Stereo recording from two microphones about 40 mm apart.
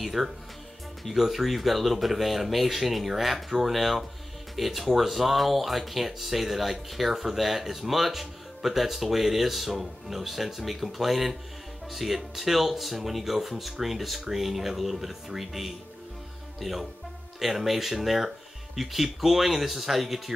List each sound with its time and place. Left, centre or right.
0.0 s speech: centre